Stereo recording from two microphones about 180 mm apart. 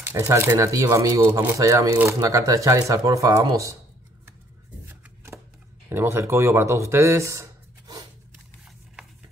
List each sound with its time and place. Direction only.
0.0 s speech: 10° right (ahead or behind)
4.8 s shuffling cards: 10° right (ahead or behind)
5.9 s a man's voice: 10° right (ahead or behind)